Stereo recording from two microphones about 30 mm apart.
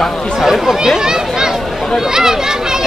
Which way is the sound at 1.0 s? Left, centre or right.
Right.